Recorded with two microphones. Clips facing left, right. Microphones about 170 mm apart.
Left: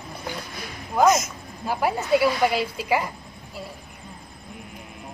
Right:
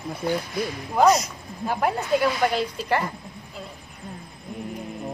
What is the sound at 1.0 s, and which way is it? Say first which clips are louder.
Speech: right 1 dB; 35° right (ahead or behind).